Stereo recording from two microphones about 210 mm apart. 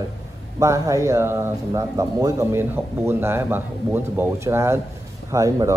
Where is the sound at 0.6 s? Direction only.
15° right (ahead or behind).